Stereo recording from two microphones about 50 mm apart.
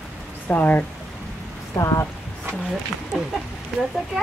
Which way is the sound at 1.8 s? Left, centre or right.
Left.